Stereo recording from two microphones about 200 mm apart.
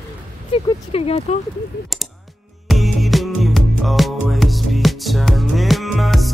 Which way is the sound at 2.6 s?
Centre (ahead or behind).